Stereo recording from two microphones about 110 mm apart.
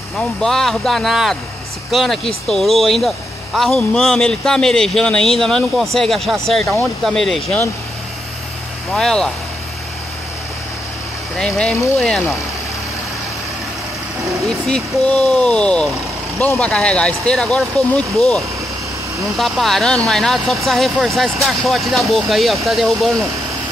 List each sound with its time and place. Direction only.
0.2 s speech: 5° left (ahead or behind)
8.9 s speech: 5° left (ahead or behind)
11.3 s speech: 5° left (ahead or behind)
14.4 s speech: 5° left (ahead or behind)